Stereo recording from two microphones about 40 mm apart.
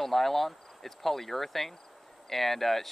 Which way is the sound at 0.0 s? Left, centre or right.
Centre.